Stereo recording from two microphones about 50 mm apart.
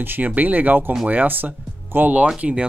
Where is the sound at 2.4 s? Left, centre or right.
Right.